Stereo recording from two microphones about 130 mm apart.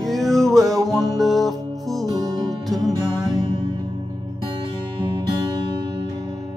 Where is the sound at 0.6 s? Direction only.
25° right (ahead or behind).